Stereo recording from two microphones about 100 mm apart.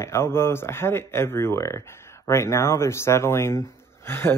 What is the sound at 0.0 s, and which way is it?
Speech, 25° left (ahead or behind).